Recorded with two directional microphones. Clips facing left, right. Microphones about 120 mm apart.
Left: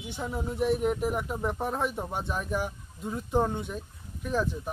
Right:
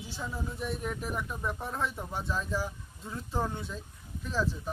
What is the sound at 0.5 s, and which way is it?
Speech, 75° left (ahead or behind).